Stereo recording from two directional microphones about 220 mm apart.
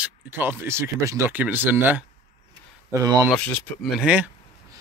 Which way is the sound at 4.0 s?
5° right (ahead or behind).